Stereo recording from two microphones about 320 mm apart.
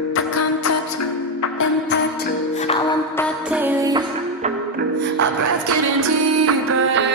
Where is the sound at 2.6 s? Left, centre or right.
Centre.